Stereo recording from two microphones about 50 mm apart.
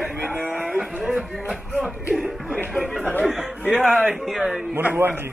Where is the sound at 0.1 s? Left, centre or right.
Right.